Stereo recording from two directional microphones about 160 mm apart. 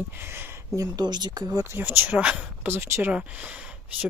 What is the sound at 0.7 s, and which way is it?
Speech, 25° right (ahead or behind).